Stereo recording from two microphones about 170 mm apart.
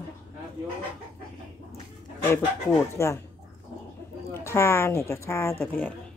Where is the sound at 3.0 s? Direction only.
15° left (ahead or behind).